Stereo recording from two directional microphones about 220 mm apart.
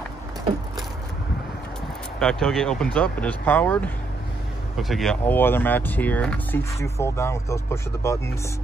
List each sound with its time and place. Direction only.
2.1 s speech: 5° left (ahead or behind)